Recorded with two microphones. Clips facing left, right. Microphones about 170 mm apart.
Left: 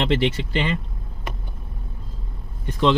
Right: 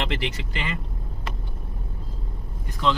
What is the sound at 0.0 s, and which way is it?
Speech, 30° left (ahead or behind).